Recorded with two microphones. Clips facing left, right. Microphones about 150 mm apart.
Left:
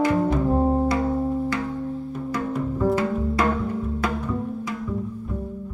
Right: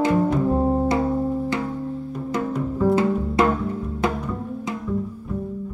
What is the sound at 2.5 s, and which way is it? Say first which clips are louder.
Music: right 2 dB; centre (ahead or behind).